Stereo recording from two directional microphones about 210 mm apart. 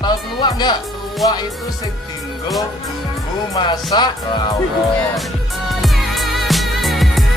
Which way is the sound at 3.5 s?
20° left (ahead or behind).